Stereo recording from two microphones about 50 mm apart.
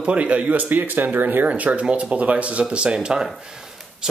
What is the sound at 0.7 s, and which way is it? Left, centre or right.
Speech, right.